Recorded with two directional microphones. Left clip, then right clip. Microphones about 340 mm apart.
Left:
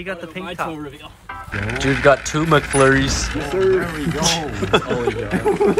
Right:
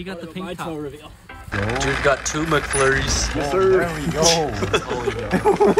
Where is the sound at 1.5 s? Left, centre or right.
Right.